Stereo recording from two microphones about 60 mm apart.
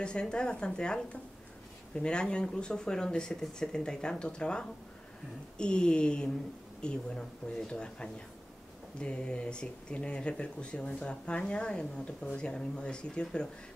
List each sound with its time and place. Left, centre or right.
0.0 s speech: centre